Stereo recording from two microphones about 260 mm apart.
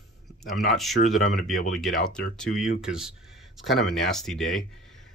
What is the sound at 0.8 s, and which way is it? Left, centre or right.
Speech, centre.